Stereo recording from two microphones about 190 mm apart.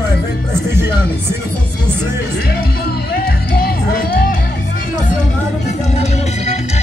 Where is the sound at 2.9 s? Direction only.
55° left (ahead or behind).